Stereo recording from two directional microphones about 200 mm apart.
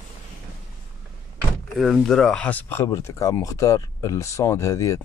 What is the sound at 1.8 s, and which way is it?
Speech, centre (ahead or behind).